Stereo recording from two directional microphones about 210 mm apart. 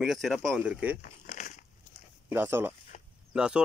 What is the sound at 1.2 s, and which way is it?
Biting, 35° left (ahead or behind).